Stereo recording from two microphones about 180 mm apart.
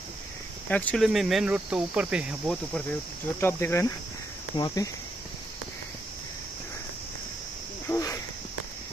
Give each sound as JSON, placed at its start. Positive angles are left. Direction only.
{"t": 0.7, "sound": "speech", "side_deg": 10}
{"t": 3.3, "sound": "speech", "side_deg": 15}
{"t": 7.9, "sound": "cricket", "side_deg": 15}